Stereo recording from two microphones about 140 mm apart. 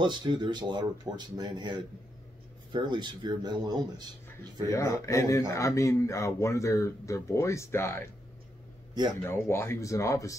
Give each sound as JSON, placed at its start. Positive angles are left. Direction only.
{"t": 0.0, "sound": "speech", "side_deg": -35}
{"t": 4.6, "sound": "speech", "side_deg": 20}
{"t": 9.2, "sound": "speech", "side_deg": 15}